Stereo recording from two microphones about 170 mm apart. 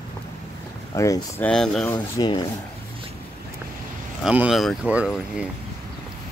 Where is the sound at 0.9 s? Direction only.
20° left (ahead or behind).